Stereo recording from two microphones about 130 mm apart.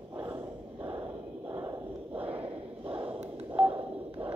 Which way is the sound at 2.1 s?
10° right (ahead or behind).